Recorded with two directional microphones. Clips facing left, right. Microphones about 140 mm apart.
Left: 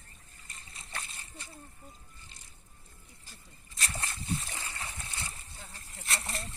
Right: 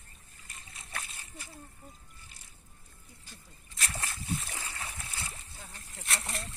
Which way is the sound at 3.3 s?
Centre (ahead or behind).